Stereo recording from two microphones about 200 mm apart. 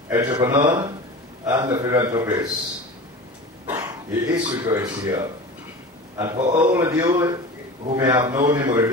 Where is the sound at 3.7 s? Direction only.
10° right (ahead or behind).